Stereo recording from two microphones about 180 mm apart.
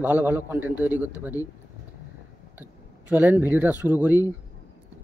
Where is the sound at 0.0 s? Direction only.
10° right (ahead or behind).